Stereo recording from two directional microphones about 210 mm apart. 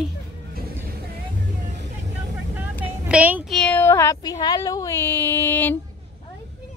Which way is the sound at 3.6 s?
10° left (ahead or behind).